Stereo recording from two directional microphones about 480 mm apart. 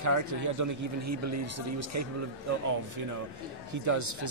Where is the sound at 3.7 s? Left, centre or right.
Right.